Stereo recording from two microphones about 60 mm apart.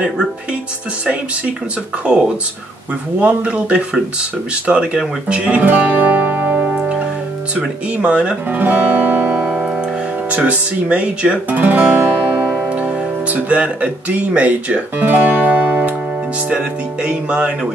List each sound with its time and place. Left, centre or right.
3.2 s speech: right
6.7 s music: centre
8.0 s speech: centre
8.5 s speech: right
9.4 s music: centre
10.3 s speech: right
12.1 s guitar: centre
16.5 s music: centre